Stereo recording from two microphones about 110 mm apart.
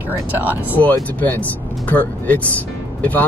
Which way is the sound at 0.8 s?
15° left (ahead or behind).